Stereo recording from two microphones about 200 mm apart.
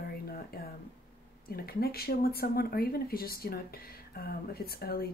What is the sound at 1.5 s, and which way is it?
Speech, 50° left (ahead or behind).